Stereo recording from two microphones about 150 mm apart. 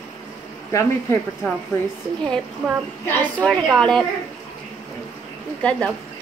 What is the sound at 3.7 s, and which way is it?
Speech, 5° left (ahead or behind).